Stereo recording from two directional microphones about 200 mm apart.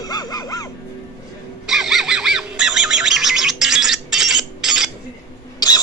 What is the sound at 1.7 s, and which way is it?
Bird, centre (ahead or behind).